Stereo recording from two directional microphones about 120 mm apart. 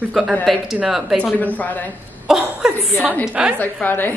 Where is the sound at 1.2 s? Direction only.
15° left (ahead or behind).